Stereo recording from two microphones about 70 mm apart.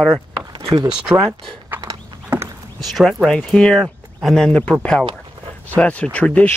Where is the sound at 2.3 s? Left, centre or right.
Right.